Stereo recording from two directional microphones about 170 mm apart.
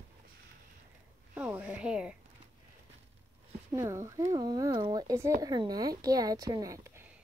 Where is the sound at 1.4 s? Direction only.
10° right (ahead or behind).